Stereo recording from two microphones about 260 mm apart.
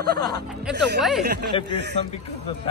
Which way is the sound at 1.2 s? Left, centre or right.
Right.